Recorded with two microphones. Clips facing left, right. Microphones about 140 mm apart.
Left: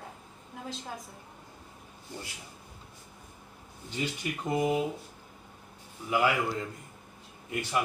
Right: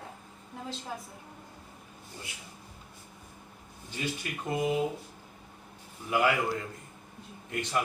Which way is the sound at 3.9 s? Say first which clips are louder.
Left 2 dB; 20° left (ahead or behind).